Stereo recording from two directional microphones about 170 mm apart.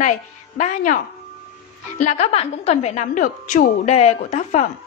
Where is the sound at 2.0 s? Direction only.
40° left (ahead or behind).